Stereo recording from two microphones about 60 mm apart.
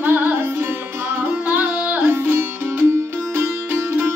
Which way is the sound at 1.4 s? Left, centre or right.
Right.